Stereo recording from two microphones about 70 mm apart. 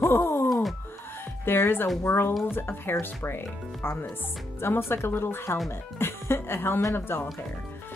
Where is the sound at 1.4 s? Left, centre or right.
Left.